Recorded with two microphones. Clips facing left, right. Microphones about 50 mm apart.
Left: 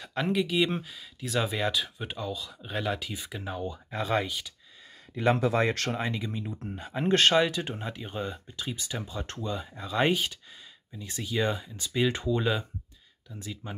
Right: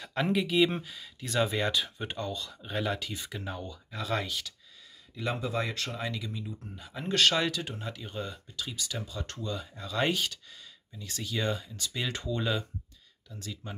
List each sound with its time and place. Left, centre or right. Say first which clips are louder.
0.0 s speech: left 1 dB; centre
3.6 s speech: left 5 dB; left
4.2 s speech: left 3 dB; centre
5.1 s speech: left 7 dB; left
5.9 s speech: left 5 dB; left
6.5 s speech: left 7 dB; left
7.3 s speech: left 5 dB; left